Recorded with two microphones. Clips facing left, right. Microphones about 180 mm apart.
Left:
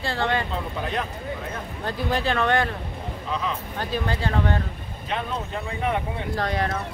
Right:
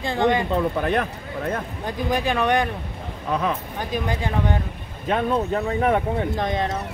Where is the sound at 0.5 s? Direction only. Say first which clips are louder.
Right 7 dB; 60° right (ahead or behind).